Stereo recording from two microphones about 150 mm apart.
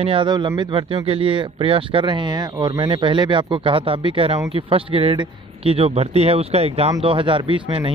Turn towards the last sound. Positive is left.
turn(degrees=-35)  # may be behind; listen again after turning